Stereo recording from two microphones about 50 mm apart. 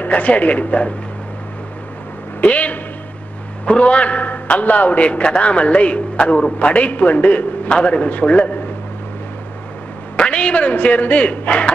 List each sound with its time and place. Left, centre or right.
0.0 s a man's voice: left
2.4 s a man's voice: left
10.1 s a man's voice: left